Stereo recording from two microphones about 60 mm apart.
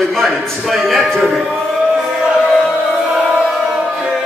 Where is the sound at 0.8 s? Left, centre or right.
Centre.